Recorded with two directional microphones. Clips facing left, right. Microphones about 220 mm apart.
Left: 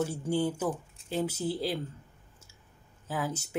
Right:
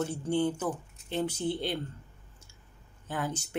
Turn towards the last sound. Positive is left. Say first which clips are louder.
# left 1 dB
turn(degrees=5)  # may be behind; listen again after turning